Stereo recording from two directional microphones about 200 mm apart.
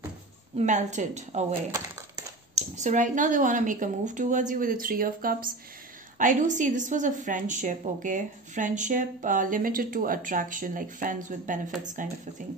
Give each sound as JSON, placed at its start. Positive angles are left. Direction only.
{"t": 0.6, "sound": "a woman's voice", "side_deg": -35}
{"t": 2.5, "sound": "a woman's voice", "side_deg": -35}